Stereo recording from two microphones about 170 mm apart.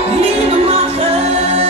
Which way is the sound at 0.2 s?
35° right (ahead or behind).